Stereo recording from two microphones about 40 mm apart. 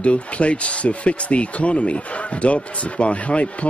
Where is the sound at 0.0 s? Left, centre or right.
Left.